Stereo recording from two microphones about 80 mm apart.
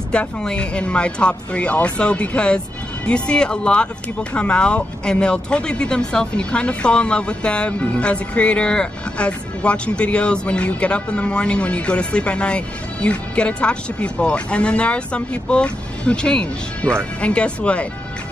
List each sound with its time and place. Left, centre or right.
0.1 s speech: centre